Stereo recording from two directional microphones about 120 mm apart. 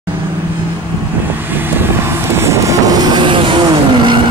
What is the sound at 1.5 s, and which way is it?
Vehicle, 15° right (ahead or behind).